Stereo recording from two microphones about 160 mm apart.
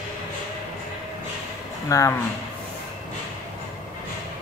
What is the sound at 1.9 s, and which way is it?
Speech, 20° left (ahead or behind).